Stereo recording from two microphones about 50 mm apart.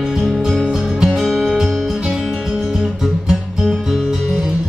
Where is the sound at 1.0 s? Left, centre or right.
Centre.